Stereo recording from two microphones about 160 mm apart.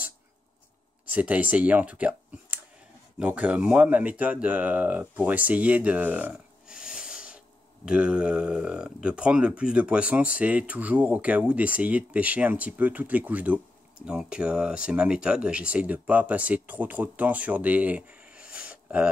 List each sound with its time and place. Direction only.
1.1 s speech: 10° right (ahead or behind)